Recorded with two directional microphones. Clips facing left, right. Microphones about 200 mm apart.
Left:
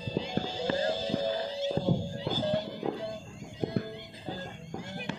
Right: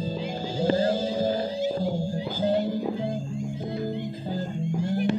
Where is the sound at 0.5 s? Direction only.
40° right (ahead or behind).